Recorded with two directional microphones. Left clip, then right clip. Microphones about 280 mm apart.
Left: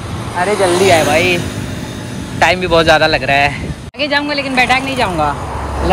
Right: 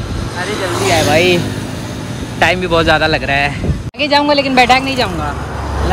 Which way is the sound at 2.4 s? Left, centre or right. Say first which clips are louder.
Left 1 dB; centre.